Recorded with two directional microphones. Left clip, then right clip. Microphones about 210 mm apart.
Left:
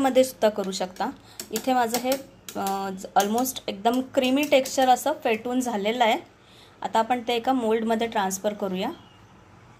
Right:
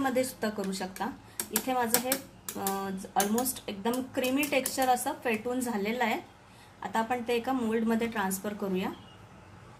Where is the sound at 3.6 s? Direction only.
45° left (ahead or behind).